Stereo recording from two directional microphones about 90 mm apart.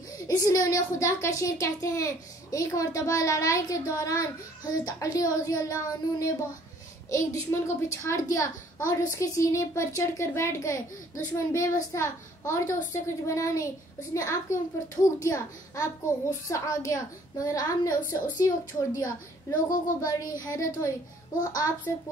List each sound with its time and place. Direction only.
0.3 s a woman's voice: 40° left (ahead or behind)